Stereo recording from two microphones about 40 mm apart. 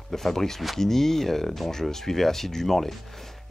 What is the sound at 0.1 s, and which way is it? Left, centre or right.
Speech, centre.